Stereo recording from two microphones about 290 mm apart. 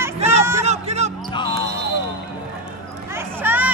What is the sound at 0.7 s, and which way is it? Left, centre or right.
Music, right.